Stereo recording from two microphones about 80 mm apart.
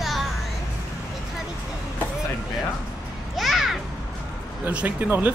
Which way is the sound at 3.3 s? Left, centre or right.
Centre.